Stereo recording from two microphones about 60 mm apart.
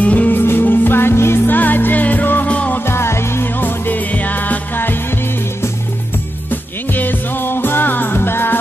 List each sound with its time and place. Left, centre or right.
0.0 s music: left
0.4 s music: left
1.6 s music: left
2.8 s music: left
6.5 s music: left